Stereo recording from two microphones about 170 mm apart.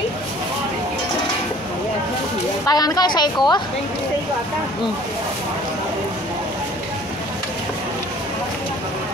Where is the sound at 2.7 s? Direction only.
20° left (ahead or behind).